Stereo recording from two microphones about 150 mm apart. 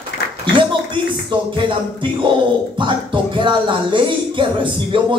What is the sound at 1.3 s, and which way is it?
Speech, 35° right (ahead or behind).